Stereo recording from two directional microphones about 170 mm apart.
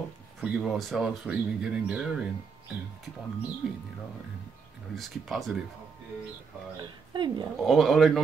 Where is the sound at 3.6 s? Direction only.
Centre (ahead or behind).